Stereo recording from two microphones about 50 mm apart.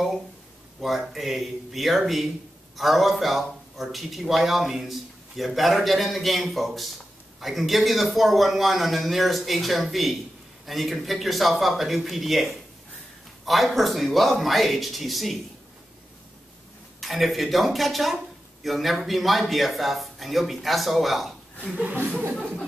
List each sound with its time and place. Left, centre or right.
0.7 s a man's voice: centre
17.0 s a man's voice: centre
21.7 s speech: right